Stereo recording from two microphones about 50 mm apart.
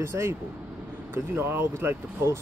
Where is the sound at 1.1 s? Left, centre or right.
Right.